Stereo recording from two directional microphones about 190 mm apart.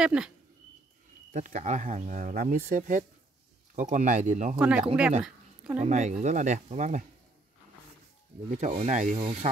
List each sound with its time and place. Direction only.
0.0 s speech: 5° right (ahead or behind)
1.3 s speech: 40° right (ahead or behind)
4.8 s speech: 5° right (ahead or behind)
5.8 s speech: 40° right (ahead or behind)
8.5 s speech: 40° right (ahead or behind)